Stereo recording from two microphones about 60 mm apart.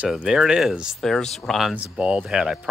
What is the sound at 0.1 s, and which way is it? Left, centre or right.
Speech, centre.